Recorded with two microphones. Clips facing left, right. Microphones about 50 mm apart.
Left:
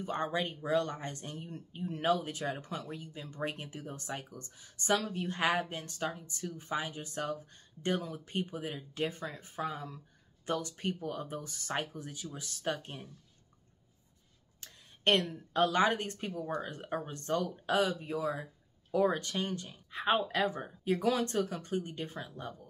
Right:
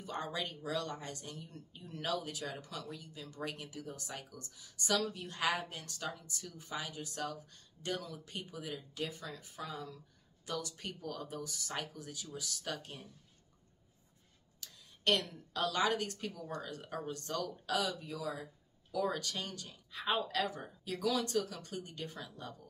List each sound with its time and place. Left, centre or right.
0.0 s speech: left
14.6 s a woman's voice: left